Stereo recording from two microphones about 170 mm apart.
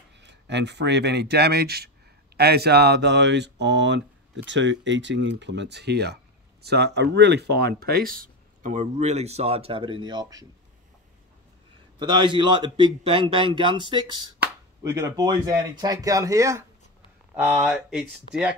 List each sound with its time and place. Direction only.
0.2 s speech: 90° right; by 10.4 s 25° right (ahead or behind)
12.0 s a man's voice: 25° right (ahead or behind)
17.4 s speech: 5° right (ahead or behind)